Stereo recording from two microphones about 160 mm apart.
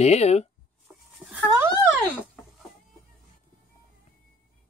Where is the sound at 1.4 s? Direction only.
20° right (ahead or behind).